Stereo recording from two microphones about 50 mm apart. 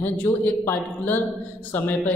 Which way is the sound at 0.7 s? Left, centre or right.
Left.